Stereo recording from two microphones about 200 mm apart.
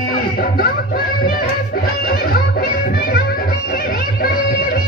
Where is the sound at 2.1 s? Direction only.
50° left (ahead or behind).